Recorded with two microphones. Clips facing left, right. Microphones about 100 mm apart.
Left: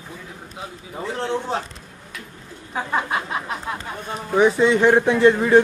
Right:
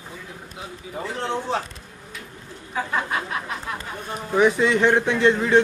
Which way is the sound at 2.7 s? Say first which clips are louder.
Left 2 dB; 25° left (ahead or behind).